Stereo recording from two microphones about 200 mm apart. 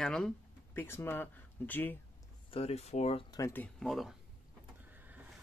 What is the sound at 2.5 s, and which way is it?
Speech, 30° left (ahead or behind).